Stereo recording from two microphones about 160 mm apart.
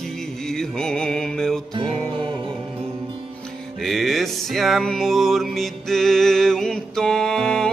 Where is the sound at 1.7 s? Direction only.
30° right (ahead or behind).